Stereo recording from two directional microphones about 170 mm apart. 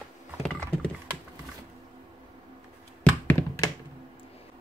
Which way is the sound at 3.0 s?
15° left (ahead or behind).